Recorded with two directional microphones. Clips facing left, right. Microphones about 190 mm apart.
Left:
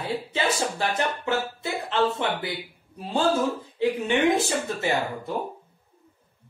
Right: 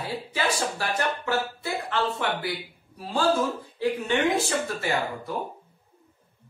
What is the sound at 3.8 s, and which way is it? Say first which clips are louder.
Speech: left 2 dB; 20° left (ahead or behind).